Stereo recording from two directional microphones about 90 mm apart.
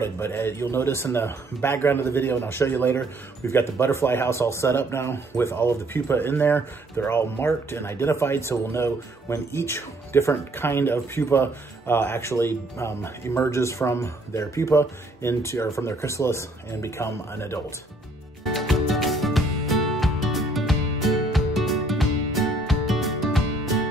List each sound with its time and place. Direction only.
0.0 s a man's voice: 25° left (ahead or behind)
18.4 s music: centre (ahead or behind)